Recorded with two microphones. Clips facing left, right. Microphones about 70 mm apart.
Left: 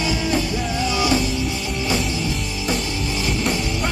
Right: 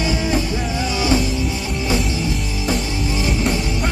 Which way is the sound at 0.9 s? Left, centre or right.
Right.